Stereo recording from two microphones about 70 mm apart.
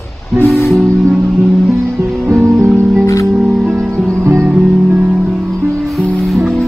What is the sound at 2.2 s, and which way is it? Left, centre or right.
Music, right.